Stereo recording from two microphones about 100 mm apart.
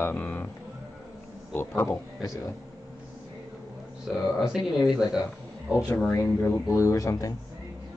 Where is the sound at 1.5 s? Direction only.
20° left (ahead or behind).